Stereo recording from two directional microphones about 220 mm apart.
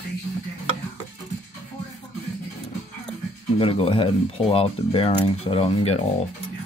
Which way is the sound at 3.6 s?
25° left (ahead or behind).